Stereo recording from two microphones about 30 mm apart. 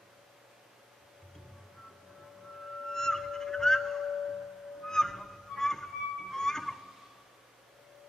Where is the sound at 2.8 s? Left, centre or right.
Centre.